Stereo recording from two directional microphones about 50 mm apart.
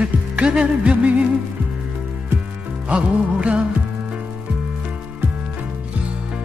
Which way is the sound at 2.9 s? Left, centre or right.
Right.